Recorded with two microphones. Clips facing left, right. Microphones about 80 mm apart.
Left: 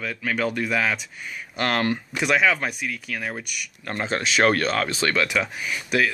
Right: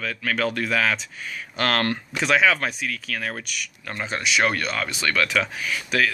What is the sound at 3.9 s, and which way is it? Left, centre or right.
Speech, left.